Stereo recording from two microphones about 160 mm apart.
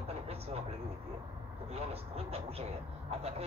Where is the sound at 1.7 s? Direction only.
40° right (ahead or behind).